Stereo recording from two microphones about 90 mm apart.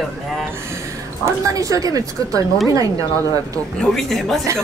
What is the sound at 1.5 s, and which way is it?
Speech, 40° right (ahead or behind).